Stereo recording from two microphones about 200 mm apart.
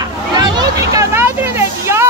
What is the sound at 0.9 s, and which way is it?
Vehicle, 15° right (ahead or behind).